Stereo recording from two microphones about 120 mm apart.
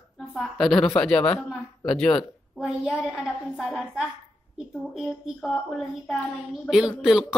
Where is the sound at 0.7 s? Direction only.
25° left (ahead or behind).